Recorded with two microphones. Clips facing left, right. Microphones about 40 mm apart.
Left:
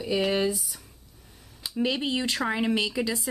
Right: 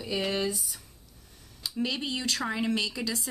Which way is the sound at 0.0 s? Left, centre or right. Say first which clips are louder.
Left 5 dB; centre.